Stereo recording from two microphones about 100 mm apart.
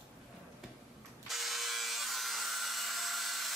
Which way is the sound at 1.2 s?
Centre (ahead or behind).